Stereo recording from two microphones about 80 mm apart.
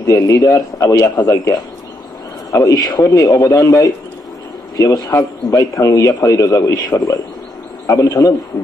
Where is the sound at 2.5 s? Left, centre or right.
Left.